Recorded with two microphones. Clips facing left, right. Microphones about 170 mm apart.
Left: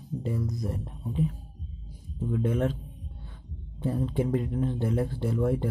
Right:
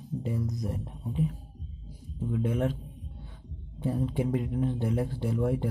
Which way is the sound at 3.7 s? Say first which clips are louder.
Left 1 dB; 15° right (ahead or behind).